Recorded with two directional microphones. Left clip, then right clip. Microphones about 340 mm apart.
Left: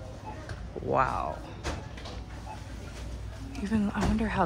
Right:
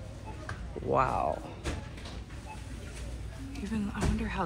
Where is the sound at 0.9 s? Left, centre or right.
Centre.